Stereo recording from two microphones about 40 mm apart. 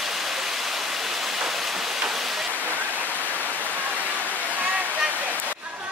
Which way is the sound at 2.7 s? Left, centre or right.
Right.